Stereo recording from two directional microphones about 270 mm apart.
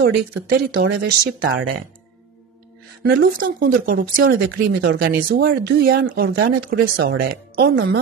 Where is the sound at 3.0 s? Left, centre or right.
Right.